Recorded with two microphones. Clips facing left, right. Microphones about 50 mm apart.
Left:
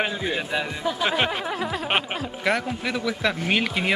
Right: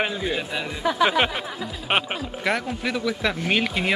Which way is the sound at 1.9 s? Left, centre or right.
Centre.